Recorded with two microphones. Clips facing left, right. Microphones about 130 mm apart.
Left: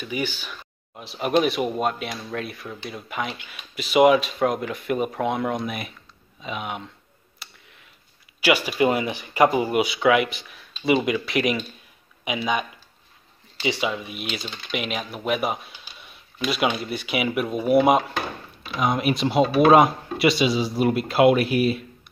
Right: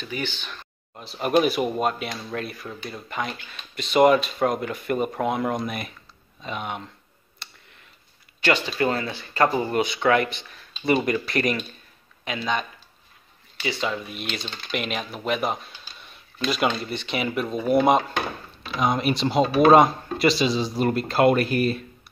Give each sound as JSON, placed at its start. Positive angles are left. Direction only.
{"t": 0.0, "sound": "speech", "side_deg": 10}
{"t": 7.4, "sound": "clicking", "side_deg": 5}
{"t": 8.4, "sound": "speech", "side_deg": 10}
{"t": 13.8, "sound": "speech", "side_deg": 5}